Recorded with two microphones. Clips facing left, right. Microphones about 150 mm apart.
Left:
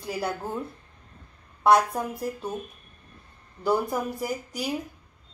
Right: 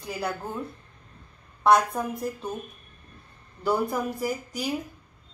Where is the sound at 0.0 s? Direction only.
Centre (ahead or behind).